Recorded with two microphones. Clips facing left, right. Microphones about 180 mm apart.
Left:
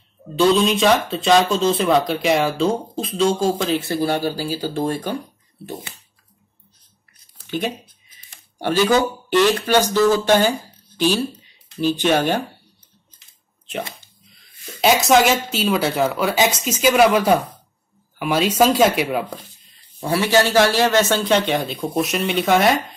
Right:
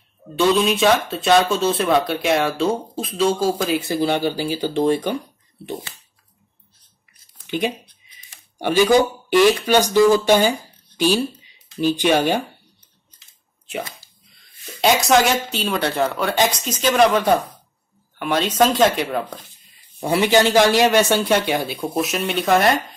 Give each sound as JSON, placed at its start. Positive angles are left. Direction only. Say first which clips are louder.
{"t": 0.4, "sound": "speech", "louder": "left 1 dB", "side_deg": -5}
{"t": 3.8, "sound": "speech", "louder": "right 1 dB", "side_deg": -15}
{"t": 7.4, "sound": "a man's voice", "louder": "right 2 dB", "side_deg": -15}
{"t": 11.0, "sound": "a sound", "louder": "right 1 dB", "side_deg": -15}
{"t": 12.0, "sound": "a man's voice", "louder": "right 1 dB", "side_deg": -10}
{"t": 14.3, "sound": "speech", "louder": "left 1 dB", "side_deg": 0}
{"t": 20.0, "sound": "a man's voice", "louder": "right 1 dB", "side_deg": -20}